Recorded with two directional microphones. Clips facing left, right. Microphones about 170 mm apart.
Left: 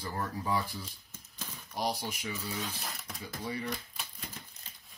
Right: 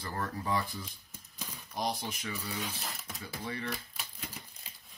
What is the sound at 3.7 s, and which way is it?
Typewriter, 5° right (ahead or behind).